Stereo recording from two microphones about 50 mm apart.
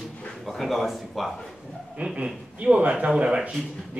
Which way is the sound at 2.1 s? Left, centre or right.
Right.